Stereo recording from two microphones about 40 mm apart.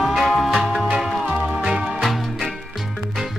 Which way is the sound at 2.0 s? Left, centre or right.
Centre.